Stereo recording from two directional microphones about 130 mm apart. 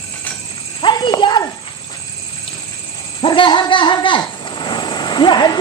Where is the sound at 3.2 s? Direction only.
40° left (ahead or behind).